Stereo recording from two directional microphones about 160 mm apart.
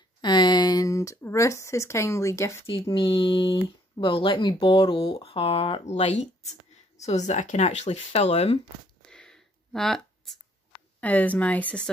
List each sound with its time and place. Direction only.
0.2 s speech: 25° left (ahead or behind)
2.9 s speech: 30° left (ahead or behind)
9.0 s a sound: 5° left (ahead or behind)
11.0 s a woman's voice: 10° left (ahead or behind)